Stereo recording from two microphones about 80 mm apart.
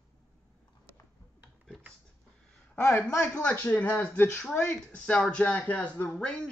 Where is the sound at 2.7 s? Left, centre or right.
Left.